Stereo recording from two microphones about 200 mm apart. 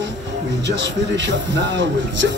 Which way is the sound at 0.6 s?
60° right (ahead or behind).